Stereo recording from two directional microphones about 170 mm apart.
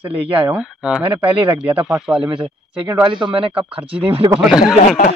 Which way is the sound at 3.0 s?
25° right (ahead or behind).